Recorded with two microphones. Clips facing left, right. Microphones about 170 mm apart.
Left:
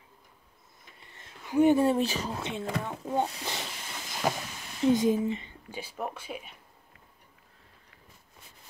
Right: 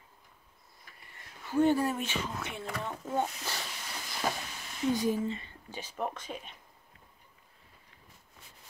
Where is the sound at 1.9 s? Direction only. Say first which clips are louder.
Left 7 dB; 35° left (ahead or behind).